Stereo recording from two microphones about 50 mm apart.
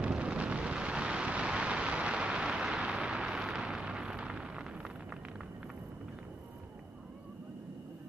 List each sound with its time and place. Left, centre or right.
0.0 s eruption: right